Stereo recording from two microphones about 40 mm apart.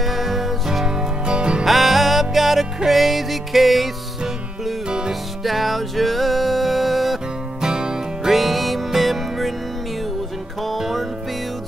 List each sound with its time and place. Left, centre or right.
0.0 s music: centre
0.8 s music: centre
1.6 s music: centre
4.8 s music: centre
5.4 s music: centre
7.6 s music: centre
8.3 s music: centre
10.8 s music: centre